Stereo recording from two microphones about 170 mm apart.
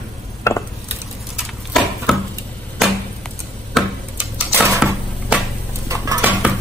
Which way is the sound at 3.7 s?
5° right (ahead or behind).